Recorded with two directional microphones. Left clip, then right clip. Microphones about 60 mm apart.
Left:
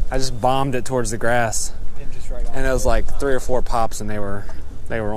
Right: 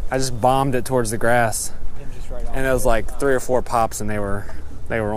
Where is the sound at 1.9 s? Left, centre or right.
Left.